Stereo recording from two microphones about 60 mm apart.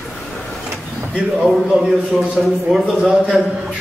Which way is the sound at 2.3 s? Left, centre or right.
Centre.